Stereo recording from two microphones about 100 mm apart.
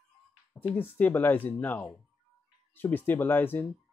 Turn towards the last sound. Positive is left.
turn(degrees=20)  # may be behind; listen again after turning